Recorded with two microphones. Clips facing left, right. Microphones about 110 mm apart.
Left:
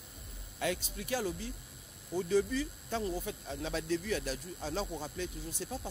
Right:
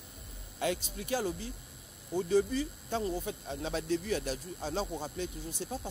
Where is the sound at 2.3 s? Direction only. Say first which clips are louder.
Right 2 dB; 30° right (ahead or behind).